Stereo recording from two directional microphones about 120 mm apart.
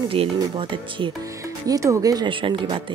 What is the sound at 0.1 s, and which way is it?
Speech, 50° right (ahead or behind).